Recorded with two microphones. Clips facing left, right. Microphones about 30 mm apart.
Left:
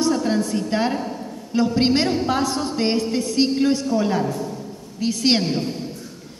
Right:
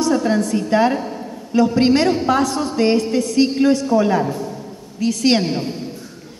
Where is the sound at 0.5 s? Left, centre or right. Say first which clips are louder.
Right 5 dB; centre.